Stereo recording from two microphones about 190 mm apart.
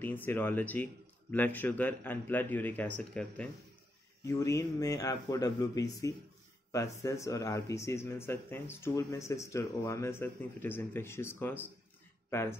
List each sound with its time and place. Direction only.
0.0 s speech: 10° left (ahead or behind)
4.2 s speech: 15° left (ahead or behind)